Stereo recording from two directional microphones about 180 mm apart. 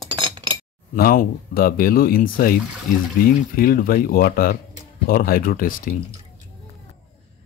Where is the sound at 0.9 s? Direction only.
55° left (ahead or behind).